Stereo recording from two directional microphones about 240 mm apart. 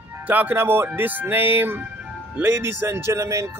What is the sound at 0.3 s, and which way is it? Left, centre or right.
Speech, centre.